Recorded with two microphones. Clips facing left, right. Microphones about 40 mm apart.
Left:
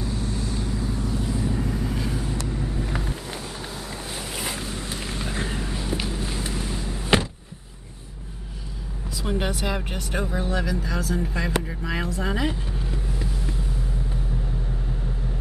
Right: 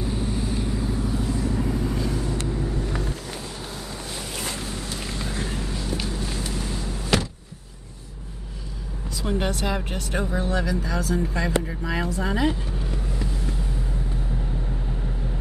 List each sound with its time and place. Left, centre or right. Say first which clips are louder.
0.0 s vehicle: right 2 dB; centre
0.7 s vehicle: right 1 dB; centre
1.2 s vehicle: right 1 dB; centre
1.6 s vehicle: right 2 dB; centre
4.1 s boat: left 1 dB; centre
5.3 s vehicle: left 1 dB; centre
9.2 s speech: right 1 dB; centre